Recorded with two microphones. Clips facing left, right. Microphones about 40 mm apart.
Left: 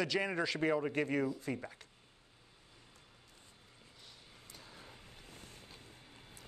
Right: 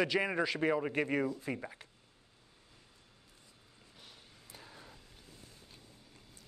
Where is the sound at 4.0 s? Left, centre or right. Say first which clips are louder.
Right 1 dB; centre.